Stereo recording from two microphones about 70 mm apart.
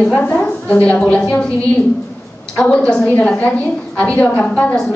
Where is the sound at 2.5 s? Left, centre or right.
Centre.